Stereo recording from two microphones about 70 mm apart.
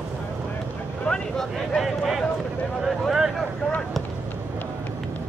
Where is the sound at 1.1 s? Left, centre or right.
Centre.